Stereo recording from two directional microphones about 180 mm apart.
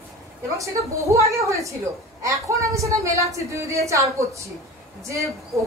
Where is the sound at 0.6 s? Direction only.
15° right (ahead or behind).